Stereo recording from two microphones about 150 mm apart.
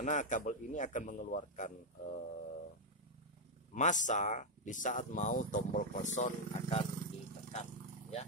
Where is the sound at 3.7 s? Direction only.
55° left (ahead or behind).